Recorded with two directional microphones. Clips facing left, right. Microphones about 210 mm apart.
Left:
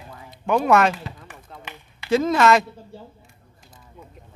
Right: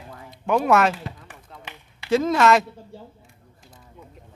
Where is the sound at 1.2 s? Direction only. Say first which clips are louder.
Left 2 dB; 30° right (ahead or behind).